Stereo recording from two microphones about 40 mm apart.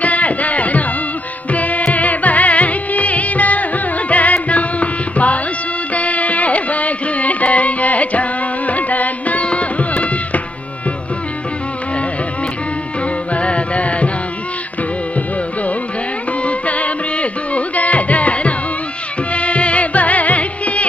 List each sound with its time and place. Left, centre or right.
0.0 s music: left
13.3 s music: left
16.4 s music: left